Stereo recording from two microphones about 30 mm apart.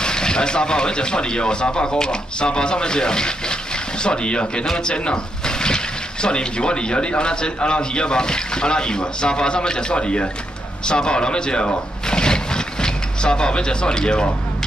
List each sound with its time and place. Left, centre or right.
0.0 s a man's voice: left